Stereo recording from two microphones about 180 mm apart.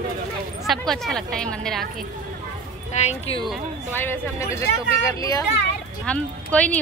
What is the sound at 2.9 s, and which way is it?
Speech, 35° left (ahead or behind).